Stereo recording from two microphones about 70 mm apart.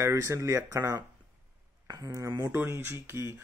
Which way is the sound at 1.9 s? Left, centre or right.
Right.